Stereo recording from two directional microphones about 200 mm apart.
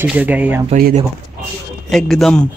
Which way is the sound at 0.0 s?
10° right (ahead or behind).